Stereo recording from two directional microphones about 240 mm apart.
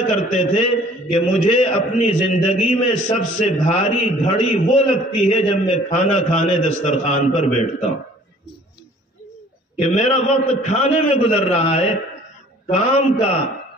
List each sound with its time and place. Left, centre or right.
0.1 s a man's voice: left
9.9 s a man's voice: left